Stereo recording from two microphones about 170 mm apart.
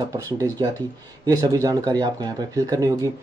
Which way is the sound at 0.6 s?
25° right (ahead or behind).